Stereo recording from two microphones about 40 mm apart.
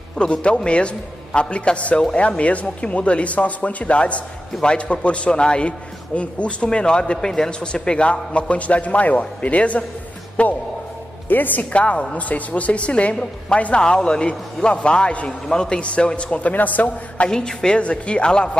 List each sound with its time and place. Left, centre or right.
0.2 s a man's voice: left
11.2 s a woman's voice: left
11.7 s speech: left
13.8 s a man's voice: left
16.3 s speech: left
17.5 s a man's voice: centre